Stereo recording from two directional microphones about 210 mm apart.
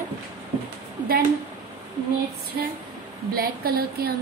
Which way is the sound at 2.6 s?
45° right (ahead or behind).